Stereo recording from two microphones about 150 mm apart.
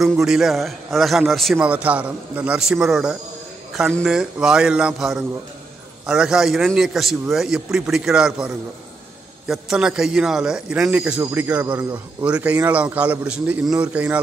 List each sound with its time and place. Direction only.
0.0 s a man's voice: centre (ahead or behind)